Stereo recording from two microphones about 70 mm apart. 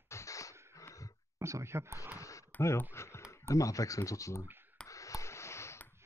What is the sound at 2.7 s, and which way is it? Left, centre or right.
Speech, left.